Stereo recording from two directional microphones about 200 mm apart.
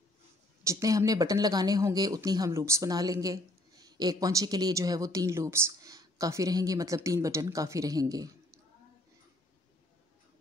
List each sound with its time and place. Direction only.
0.7 s speech: 15° right (ahead or behind)